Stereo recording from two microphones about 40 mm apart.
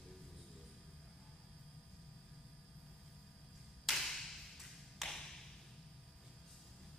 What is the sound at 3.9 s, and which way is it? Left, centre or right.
Tap, centre.